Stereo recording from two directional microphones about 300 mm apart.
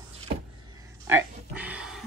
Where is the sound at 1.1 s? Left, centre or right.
Centre.